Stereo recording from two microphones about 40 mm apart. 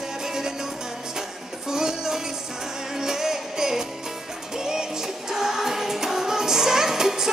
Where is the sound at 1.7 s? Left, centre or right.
Centre.